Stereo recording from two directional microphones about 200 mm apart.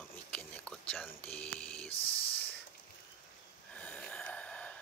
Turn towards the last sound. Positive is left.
turn(degrees=5)  # may be behind; listen again after turning